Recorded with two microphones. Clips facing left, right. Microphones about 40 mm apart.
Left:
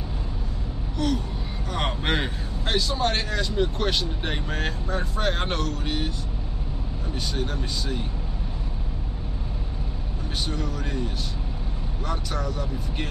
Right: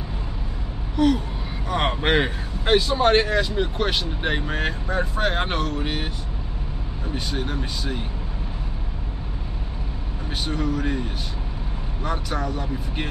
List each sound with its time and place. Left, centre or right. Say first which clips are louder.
0.9 s gasp: right 7 dB; centre
1.7 s speech: right 5 dB; centre
7.2 s speech: right 2 dB; centre
10.5 s speech: right 5 dB; centre